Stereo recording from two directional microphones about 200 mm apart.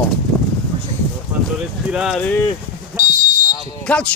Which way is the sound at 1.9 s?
5° right (ahead or behind).